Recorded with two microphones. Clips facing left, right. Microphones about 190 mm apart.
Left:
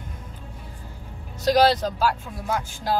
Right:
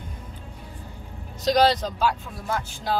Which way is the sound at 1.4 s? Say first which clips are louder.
Left 1 dB; 5° left (ahead or behind).